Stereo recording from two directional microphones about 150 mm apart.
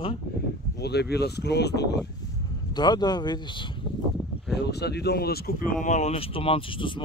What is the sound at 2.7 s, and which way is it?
Speech, 30° left (ahead or behind).